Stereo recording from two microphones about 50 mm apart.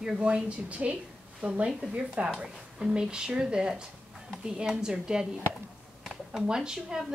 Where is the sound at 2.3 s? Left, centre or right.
Centre.